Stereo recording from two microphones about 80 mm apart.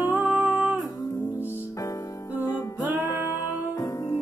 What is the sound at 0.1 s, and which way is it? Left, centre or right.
Music, centre.